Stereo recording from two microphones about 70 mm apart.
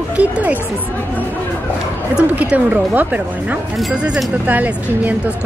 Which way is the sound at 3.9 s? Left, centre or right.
Centre.